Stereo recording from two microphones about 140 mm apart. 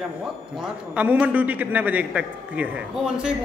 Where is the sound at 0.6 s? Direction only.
5° right (ahead or behind).